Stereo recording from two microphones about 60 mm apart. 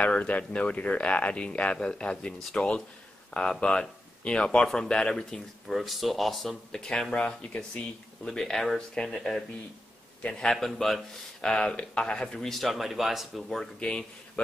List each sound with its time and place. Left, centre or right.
0.0 s speech: left
5.7 s speech: centre
11.4 s speech: centre
12.5 s speech: centre
13.7 s speech: centre